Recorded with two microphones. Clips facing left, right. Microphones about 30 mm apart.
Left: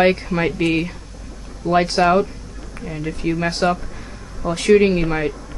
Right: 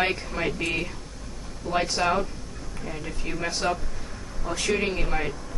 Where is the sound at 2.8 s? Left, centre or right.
Centre.